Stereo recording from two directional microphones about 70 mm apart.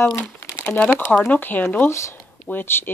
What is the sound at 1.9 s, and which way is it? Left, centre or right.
Speech, left.